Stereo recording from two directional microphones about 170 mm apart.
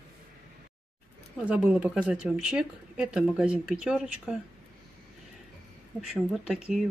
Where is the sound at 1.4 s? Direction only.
5° right (ahead or behind).